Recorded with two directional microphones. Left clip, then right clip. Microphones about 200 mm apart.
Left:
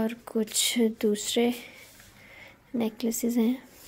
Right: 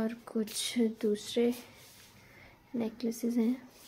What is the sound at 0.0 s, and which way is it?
Speech, 20° left (ahead or behind).